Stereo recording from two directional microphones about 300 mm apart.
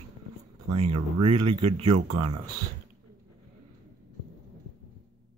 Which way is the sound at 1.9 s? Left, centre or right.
Right.